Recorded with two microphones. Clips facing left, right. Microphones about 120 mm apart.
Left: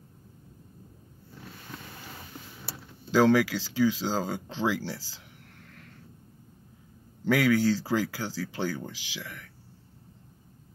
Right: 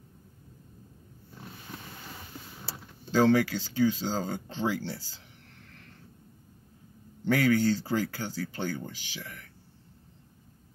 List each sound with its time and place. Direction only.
3.1 s speech: 90° left
7.2 s speech: 90° left